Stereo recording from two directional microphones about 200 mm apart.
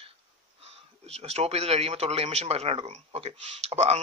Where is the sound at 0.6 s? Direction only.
30° right (ahead or behind).